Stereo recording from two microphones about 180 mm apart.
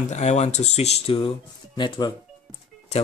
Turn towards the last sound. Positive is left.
turn(degrees=35)  # may be behind; listen again after turning